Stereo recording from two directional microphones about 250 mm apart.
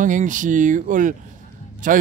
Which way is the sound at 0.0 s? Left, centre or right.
Right.